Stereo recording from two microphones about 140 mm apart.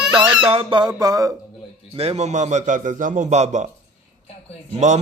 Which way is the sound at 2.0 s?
50° right (ahead or behind).